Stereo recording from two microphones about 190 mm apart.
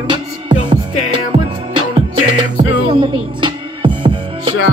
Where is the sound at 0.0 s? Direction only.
25° right (ahead or behind).